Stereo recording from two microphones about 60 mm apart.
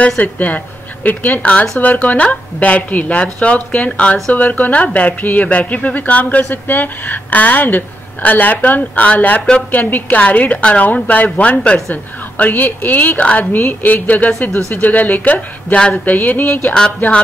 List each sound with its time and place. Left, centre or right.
0.2 s speech: left